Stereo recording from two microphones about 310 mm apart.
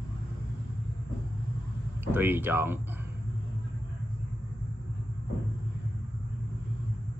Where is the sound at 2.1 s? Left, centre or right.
Centre.